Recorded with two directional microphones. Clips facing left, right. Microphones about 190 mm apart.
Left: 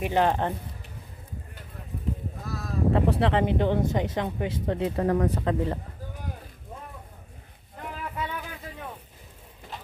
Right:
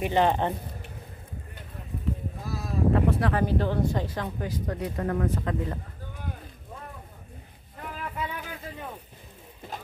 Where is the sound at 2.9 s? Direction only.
25° left (ahead or behind).